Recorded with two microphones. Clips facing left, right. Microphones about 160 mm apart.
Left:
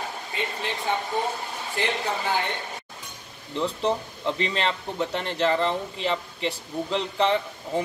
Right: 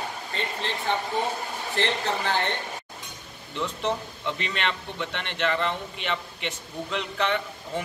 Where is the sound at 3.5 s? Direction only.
35° left (ahead or behind).